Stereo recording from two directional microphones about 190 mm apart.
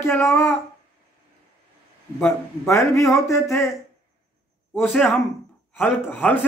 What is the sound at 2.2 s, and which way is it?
Speech, 15° left (ahead or behind).